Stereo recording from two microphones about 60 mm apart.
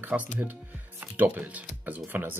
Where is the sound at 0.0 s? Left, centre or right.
Right.